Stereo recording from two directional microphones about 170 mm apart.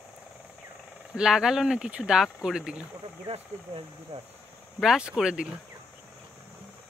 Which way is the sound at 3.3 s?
30° right (ahead or behind).